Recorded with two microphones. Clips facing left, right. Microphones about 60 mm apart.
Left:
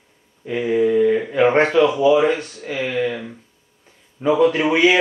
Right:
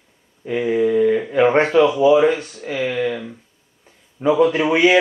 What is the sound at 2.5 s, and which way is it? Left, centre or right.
Speech, centre.